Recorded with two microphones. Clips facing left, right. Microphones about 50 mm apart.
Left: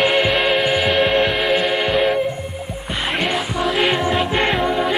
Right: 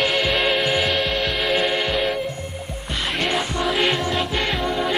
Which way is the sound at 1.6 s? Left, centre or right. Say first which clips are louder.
Left 4 dB; centre.